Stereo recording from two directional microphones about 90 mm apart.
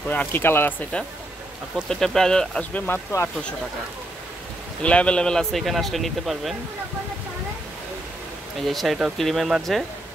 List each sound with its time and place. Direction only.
0.1 s speech: 20° left (ahead or behind)
1.9 s speech: 5° left (ahead or behind)
3.1 s speech: 35° left (ahead or behind)
4.8 s speech: 10° left (ahead or behind)
8.5 s speech: centre (ahead or behind)